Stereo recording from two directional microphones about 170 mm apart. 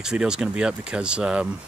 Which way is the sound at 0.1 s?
5° right (ahead or behind).